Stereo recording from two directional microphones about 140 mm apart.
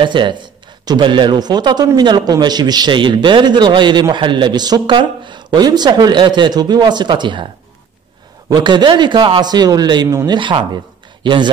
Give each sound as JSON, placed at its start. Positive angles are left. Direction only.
{"t": 0.0, "sound": "a man's voice", "side_deg": -35}
{"t": 8.5, "sound": "a man's voice", "side_deg": -35}